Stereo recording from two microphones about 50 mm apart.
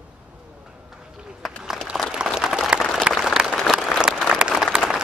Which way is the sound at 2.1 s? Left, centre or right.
Centre.